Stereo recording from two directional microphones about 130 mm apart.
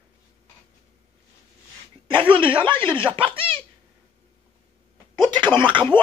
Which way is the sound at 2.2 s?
40° right (ahead or behind).